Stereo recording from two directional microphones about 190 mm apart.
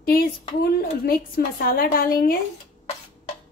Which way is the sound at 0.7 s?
50° left (ahead or behind).